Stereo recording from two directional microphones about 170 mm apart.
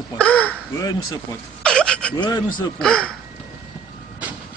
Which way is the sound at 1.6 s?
5° left (ahead or behind).